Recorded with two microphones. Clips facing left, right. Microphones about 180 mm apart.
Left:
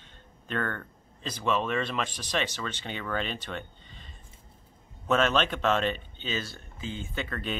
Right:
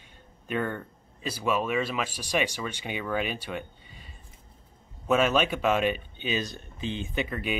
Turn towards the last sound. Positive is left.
turn(degrees=-15)  # may be behind; listen again after turning